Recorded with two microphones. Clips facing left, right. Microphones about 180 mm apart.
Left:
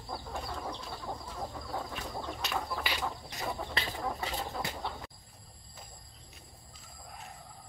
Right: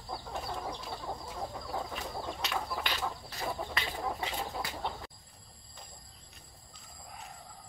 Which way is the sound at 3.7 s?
40° left (ahead or behind).